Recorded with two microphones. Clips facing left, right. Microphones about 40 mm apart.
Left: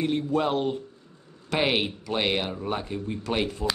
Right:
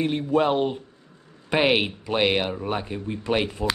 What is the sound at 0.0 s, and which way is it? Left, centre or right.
Speech, right.